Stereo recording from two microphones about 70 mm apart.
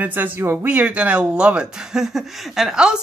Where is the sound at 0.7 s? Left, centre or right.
Centre.